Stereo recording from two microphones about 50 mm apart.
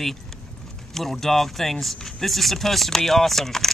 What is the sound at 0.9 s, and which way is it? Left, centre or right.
Speech, centre.